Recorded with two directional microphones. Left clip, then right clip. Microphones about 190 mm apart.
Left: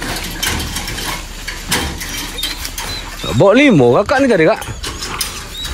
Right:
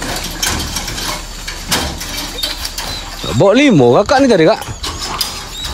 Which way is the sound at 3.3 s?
10° right (ahead or behind).